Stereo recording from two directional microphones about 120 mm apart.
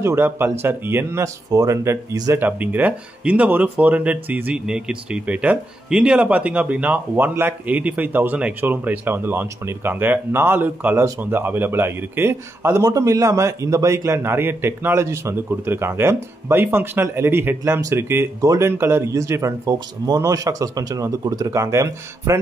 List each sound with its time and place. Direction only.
0.0 s speech: 20° right (ahead or behind)
2.3 s speech: 15° right (ahead or behind)